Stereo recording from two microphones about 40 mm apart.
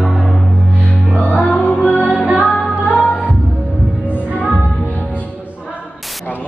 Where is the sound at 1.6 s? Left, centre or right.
Left.